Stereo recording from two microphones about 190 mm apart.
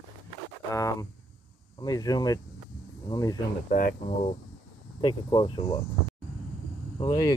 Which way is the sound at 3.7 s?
50° left (ahead or behind).